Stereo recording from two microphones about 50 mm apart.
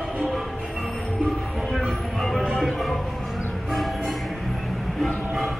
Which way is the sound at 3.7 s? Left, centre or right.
Centre.